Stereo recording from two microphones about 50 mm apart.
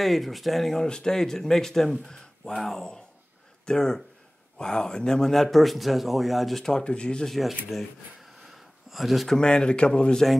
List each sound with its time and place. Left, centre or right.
0.0 s speech: centre
0.8 s speech: centre
6.8 s speech: left
7.2 s speech: centre
9.3 s speech: centre